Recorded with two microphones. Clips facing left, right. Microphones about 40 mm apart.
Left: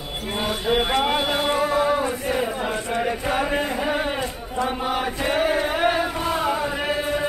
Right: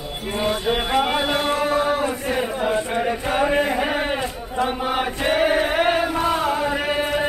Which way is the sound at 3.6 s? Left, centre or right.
Right.